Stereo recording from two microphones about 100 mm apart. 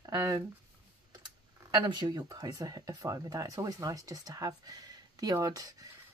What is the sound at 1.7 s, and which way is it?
Speech, 40° right (ahead or behind).